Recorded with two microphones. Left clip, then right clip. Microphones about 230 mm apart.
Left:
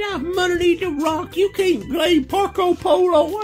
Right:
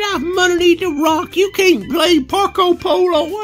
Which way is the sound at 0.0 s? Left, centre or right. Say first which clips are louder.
Right 6 dB; right.